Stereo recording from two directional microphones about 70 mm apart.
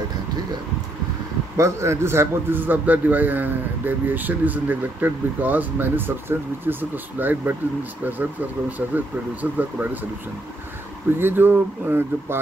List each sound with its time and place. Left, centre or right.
1.6 s a man's voice: right
11.1 s speech: right